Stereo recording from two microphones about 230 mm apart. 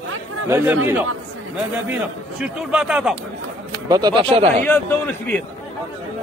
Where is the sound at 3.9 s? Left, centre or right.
Centre.